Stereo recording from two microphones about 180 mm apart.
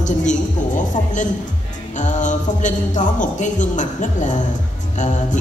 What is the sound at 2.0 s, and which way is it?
Speech, 45° left (ahead or behind).